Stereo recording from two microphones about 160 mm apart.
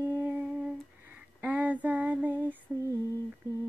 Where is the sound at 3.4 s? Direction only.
20° right (ahead or behind).